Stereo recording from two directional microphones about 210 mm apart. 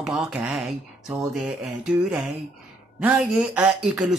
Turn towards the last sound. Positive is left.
turn(degrees=0)  # may be behind; listen again after turning